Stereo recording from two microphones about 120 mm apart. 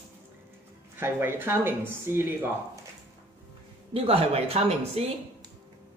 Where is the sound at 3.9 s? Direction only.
55° right (ahead or behind).